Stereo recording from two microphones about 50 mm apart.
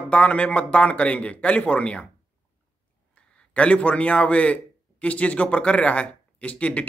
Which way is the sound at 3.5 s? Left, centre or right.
Left.